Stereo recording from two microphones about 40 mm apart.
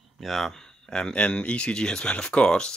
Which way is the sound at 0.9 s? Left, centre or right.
Centre.